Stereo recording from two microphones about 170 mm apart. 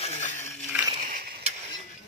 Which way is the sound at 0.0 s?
40° left (ahead or behind).